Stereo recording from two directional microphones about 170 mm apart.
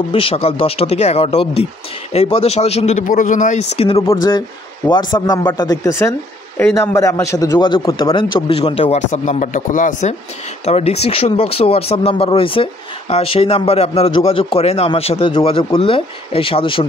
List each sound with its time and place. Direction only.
0.1 s a man's voice: 35° left (ahead or behind)
4.0 s a man's voice: 20° left (ahead or behind); by 10.1 s 50° left (ahead or behind)
10.6 s a man's voice: 35° left (ahead or behind)